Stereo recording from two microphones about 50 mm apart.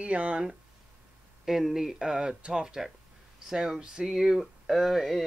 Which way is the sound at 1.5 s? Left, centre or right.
Centre.